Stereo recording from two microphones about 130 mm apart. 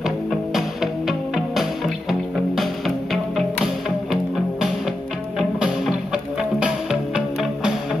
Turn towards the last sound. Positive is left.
turn(degrees=-5)  # may be behind; listen again after turning